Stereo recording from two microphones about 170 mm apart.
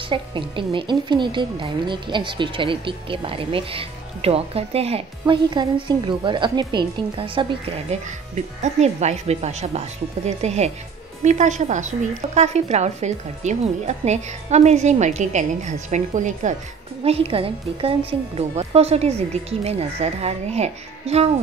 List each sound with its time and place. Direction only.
0.1 s a woman's voice: 30° right (ahead or behind)